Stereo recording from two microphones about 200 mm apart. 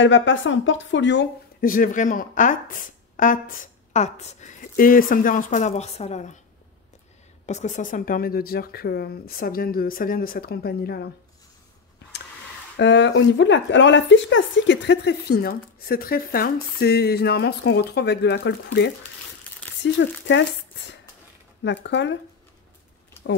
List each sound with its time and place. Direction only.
0.0 s speech: 70° left (ahead or behind)
1.6 s speech: 45° left (ahead or behind)
7.4 s speech: 35° left (ahead or behind); by 11.1 s 50° left (ahead or behind)
12.7 s a woman's voice: 65° left (ahead or behind)
21.8 s a woman's voice: 65° left (ahead or behind)